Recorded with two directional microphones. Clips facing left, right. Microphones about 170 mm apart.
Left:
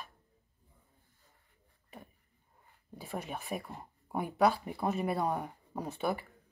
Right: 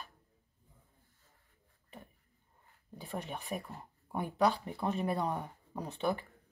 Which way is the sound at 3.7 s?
15° left (ahead or behind).